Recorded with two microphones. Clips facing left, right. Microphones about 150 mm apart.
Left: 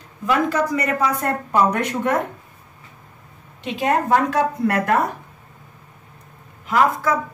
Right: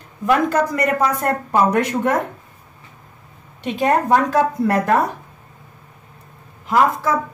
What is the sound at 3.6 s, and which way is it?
A woman's voice, 35° right (ahead or behind).